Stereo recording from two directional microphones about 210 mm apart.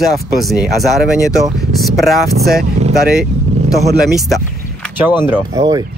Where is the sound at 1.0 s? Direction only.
5° right (ahead or behind).